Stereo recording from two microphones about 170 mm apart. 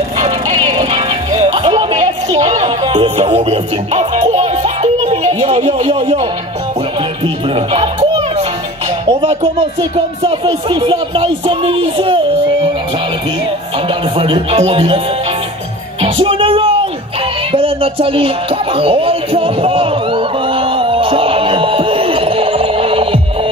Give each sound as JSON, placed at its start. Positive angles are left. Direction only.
{"t": 0.5, "sound": "music", "side_deg": -30}
{"t": 5.9, "sound": "speech", "side_deg": -30}
{"t": 7.5, "sound": "music", "side_deg": -35}
{"t": 9.0, "sound": "speech", "side_deg": -30}
{"t": 14.1, "sound": "speech", "side_deg": -30}
{"t": 16.0, "sound": "music", "side_deg": -30}